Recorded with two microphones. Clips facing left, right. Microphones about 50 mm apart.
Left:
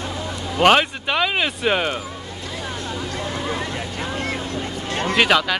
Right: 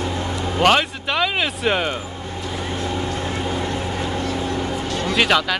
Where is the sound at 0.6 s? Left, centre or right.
Centre.